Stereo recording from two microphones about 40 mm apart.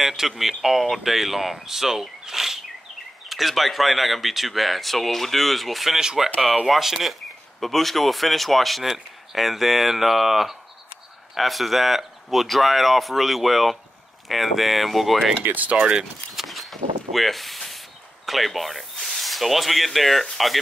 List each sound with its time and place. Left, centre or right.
0.0 s speech: centre
15.4 s speech: right
16.3 s a sound: centre
19.0 s speech: centre